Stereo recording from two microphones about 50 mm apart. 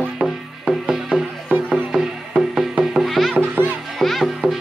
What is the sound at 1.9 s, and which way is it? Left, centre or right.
Music, centre.